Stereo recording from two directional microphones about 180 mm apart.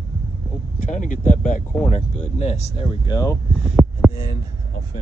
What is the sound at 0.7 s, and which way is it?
Speech, 45° left (ahead or behind).